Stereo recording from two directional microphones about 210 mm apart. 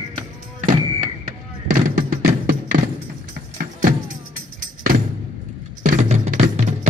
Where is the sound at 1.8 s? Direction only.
40° right (ahead or behind).